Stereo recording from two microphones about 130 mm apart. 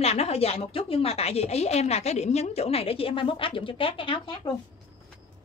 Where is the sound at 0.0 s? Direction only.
55° left (ahead or behind).